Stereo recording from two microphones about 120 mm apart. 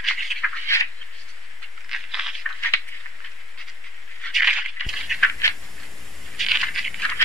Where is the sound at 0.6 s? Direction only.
25° left (ahead or behind).